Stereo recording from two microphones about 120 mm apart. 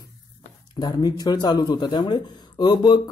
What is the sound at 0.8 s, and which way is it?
Speech, 35° left (ahead or behind).